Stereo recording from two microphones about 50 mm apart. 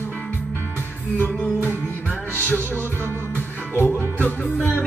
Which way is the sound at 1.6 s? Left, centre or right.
Left.